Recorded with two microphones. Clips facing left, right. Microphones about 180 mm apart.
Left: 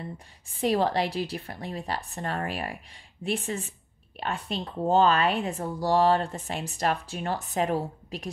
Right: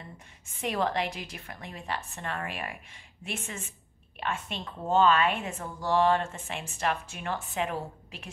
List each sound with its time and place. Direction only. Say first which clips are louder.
0.0 s speech: left 8 dB; 35° left (ahead or behind)